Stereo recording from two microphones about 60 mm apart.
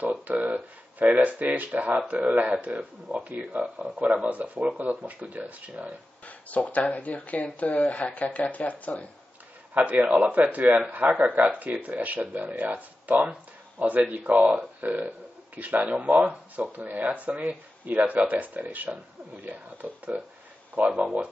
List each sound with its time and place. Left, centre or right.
0.3 s speech: right
3.3 s speech: centre
4.1 s speech: right
6.2 s speech: left
9.8 s speech: right